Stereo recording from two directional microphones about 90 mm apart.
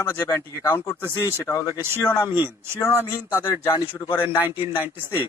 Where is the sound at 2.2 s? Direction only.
50° left (ahead or behind).